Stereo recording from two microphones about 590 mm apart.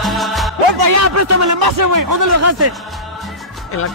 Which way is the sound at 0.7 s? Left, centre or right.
Right.